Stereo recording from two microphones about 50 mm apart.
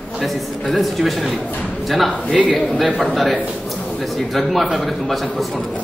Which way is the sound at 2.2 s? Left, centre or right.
Right.